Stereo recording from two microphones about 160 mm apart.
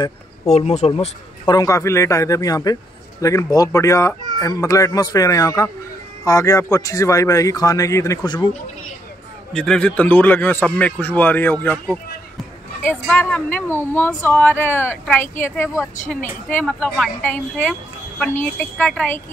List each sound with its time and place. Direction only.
0.5 s speech: 40° left (ahead or behind)
1.5 s a man's voice: 20° left (ahead or behind)
9.5 s speech: 5° left (ahead or behind)